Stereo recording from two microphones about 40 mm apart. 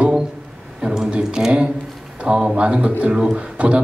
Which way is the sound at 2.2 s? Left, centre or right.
Right.